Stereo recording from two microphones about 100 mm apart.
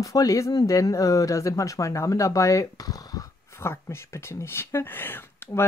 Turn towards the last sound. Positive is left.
turn(degrees=20)  # may be behind; listen again after turning